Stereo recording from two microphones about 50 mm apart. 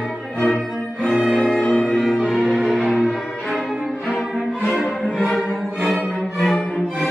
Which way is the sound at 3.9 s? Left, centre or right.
Centre.